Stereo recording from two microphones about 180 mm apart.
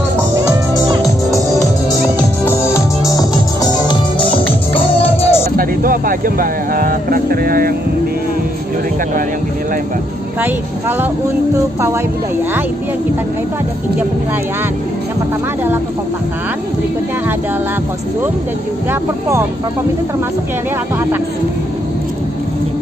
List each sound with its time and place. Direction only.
0.4 s music: 25° right (ahead or behind)
3.8 s music: 30° left (ahead or behind)
5.6 s speech: 50° right (ahead or behind)
10.4 s speech: 10° right (ahead or behind)
18.9 s speech: 15° right (ahead or behind)